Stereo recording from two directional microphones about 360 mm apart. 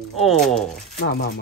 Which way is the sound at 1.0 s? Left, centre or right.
Left.